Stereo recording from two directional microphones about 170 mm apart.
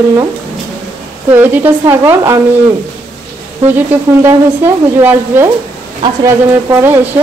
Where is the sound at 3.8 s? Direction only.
10° right (ahead or behind).